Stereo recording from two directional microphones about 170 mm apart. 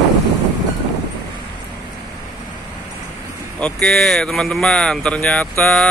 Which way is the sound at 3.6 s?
5° left (ahead or behind).